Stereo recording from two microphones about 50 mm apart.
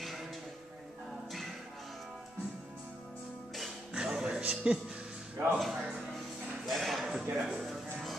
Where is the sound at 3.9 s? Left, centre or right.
Centre.